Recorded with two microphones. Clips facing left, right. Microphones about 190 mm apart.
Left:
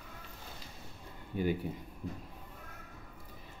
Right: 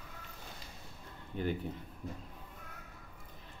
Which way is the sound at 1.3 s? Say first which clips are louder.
Left 3 dB; 10° left (ahead or behind).